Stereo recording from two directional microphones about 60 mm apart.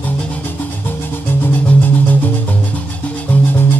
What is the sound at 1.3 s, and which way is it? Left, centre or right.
Music, left.